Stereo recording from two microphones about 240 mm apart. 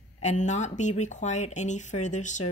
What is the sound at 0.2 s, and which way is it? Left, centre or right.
Speech, left.